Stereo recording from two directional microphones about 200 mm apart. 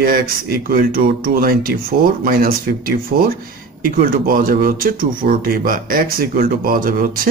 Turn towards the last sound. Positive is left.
turn(degrees=-45)  # may be behind; listen again after turning